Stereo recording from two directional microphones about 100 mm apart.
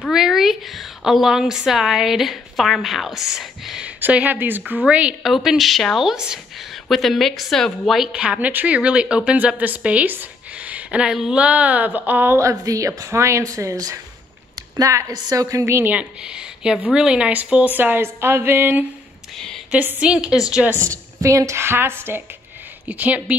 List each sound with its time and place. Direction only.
0.1 s a woman's voice: 5° right (ahead or behind)
4.0 s a woman's voice: 15° right (ahead or behind); by 15.4 s 40° right (ahead or behind)
15.4 s speech: 30° right (ahead or behind)
15.9 s a woman's voice: 10° right (ahead or behind)
19.3 s speech: 5° left (ahead or behind)
19.7 s a woman's voice: 15° right (ahead or behind)
20.9 s a woman's voice: 30° right (ahead or behind); by 23.3 s 15° right (ahead or behind)